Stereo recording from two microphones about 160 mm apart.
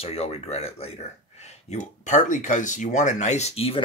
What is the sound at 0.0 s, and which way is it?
Speech, 40° left (ahead or behind).